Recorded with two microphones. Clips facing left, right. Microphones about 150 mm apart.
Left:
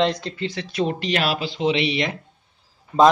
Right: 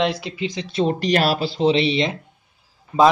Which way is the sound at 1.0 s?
40° right (ahead or behind).